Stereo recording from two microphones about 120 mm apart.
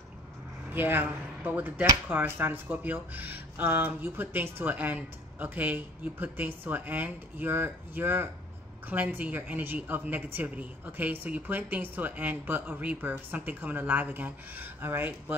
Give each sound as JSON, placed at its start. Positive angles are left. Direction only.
{"t": 0.7, "sound": "speech", "side_deg": -15}